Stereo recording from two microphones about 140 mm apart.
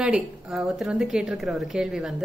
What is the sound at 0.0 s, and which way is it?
A woman's voice, 5° right (ahead or behind).